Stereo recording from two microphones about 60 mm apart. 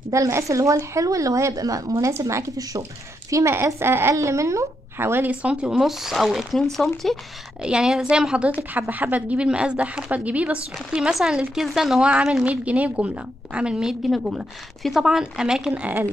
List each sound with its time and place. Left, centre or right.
0.1 s speech: right
2.1 s a woman's voice: right
3.8 s speech: right
4.1 s speech: right
4.9 s speech: right
5.3 s a woman's voice: centre
5.8 s speech: centre
7.6 s speech: centre
8.9 s a woman's voice: right
11.0 s speech: centre
12.3 s a woman's voice: centre
15.7 s a woman's voice: right